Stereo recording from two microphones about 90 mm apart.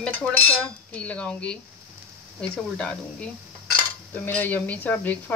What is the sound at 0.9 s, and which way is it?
Speech, 15° left (ahead or behind).